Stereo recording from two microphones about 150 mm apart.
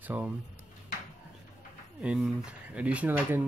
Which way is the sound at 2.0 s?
5° right (ahead or behind).